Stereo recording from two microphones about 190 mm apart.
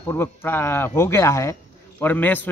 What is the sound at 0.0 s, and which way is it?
Speech, 10° left (ahead or behind).